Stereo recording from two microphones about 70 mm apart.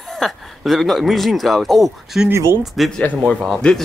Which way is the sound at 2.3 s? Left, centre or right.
Right.